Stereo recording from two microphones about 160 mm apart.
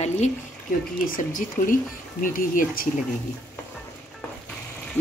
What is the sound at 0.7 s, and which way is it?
Speech, 55° left (ahead or behind).